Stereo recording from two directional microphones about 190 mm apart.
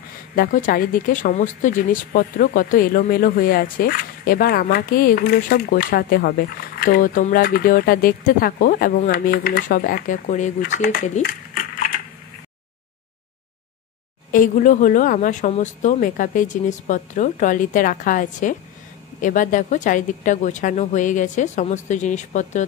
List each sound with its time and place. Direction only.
0.4 s speech: 45° left (ahead or behind)
14.3 s speech: 45° left (ahead or behind)